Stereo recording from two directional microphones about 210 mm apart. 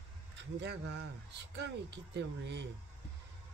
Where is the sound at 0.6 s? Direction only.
55° right (ahead or behind).